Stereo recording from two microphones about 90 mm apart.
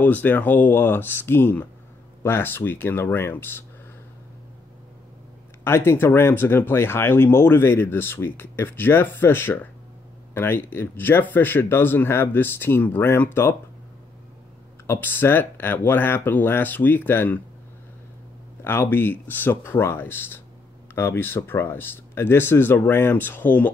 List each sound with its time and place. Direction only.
0.0 s speech: 20° left (ahead or behind)
5.6 s speech: 30° left (ahead or behind)
14.9 s speech: 20° left (ahead or behind)
18.6 s speech: 25° left (ahead or behind)